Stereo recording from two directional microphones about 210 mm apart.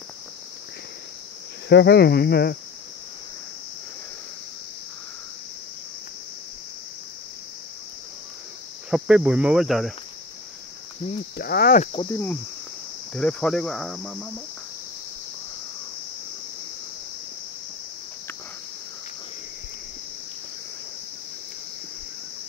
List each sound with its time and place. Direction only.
1.7 s speech: 55° left (ahead or behind)
8.9 s speech: 5° right (ahead or behind)
11.3 s speech: 50° left (ahead or behind)
11.9 s cricket: 25° left (ahead or behind)
13.1 s speech: 5° left (ahead or behind)